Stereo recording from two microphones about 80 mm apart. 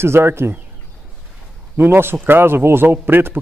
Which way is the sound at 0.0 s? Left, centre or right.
Right.